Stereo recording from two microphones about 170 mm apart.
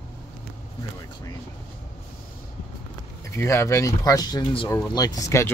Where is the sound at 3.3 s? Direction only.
15° left (ahead or behind).